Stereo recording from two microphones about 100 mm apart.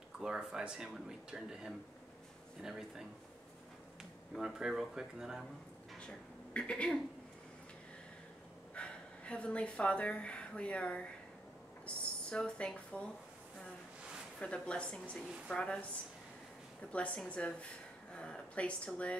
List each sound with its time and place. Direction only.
0.2 s speech: 5° right (ahead or behind)
4.4 s speech: 5° right (ahead or behind)
5.9 s a sound: 10° left (ahead or behind)
8.7 s a woman's voice: 10° left (ahead or behind)
14.4 s speech: 10° left (ahead or behind)
16.9 s speech: 10° left (ahead or behind)